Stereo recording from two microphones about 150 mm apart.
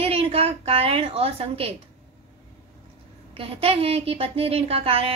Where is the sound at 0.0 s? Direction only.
40° right (ahead or behind).